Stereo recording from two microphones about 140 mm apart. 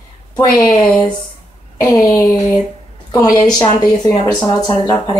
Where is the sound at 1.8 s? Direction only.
25° left (ahead or behind).